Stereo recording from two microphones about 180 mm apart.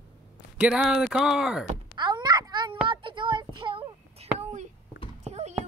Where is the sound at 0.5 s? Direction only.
5° right (ahead or behind).